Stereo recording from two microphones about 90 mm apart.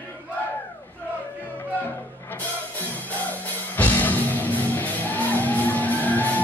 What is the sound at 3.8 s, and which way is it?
Music, 20° left (ahead or behind).